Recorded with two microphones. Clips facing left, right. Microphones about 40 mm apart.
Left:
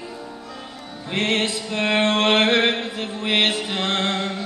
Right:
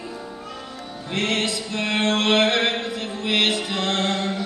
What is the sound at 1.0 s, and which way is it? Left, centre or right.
Music, left.